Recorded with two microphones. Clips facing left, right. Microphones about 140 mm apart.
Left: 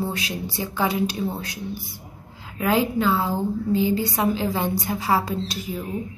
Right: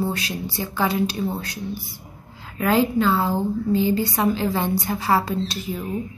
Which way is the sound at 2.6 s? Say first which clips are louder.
Right 2 dB; 10° left (ahead or behind).